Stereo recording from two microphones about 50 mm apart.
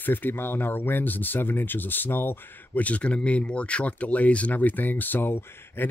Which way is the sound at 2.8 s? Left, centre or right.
Left.